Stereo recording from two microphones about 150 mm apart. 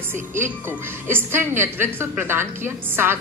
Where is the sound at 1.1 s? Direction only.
15° right (ahead or behind).